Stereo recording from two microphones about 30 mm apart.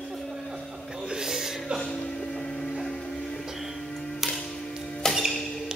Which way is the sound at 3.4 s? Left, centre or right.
Centre.